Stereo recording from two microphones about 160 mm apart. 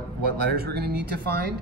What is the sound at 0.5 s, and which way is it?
Speech, 85° right.